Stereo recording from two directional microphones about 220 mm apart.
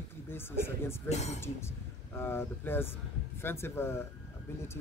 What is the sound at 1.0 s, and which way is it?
Speech, 30° left (ahead or behind).